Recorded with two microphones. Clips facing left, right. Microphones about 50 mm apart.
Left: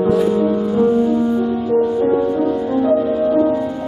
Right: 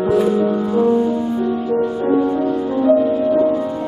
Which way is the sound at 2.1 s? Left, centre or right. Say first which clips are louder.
Even; centre.